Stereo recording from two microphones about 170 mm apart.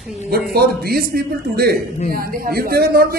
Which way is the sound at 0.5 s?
65° right (ahead or behind).